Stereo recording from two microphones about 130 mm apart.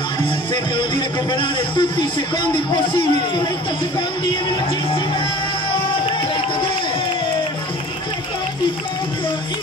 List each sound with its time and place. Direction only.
0.7 s a man's voice: 40° left (ahead or behind)